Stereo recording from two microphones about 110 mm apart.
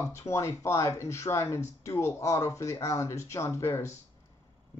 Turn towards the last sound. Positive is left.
turn(degrees=25)  # may be behind; listen again after turning